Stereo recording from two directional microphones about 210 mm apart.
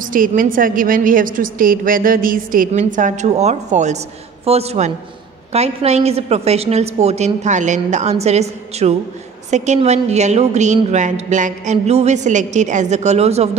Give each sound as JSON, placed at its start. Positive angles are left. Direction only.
{"t": 0.0, "sound": "a woman's voice", "side_deg": -40}